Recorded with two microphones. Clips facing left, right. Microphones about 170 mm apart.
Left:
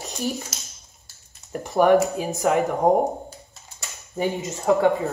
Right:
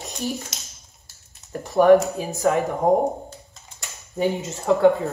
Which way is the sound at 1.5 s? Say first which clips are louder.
Right 3 dB; 20° left (ahead or behind).